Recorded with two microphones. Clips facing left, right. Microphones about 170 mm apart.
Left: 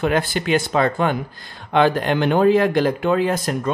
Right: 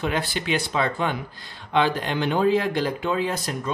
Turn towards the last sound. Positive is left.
turn(degrees=50)  # may be behind; listen again after turning